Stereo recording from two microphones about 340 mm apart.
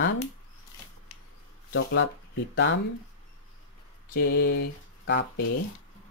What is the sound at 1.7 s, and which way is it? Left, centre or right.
Speech, left.